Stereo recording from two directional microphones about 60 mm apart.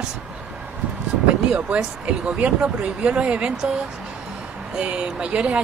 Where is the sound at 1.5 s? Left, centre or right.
Centre.